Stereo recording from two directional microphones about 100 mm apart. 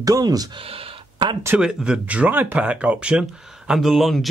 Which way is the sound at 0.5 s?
70° right (ahead or behind).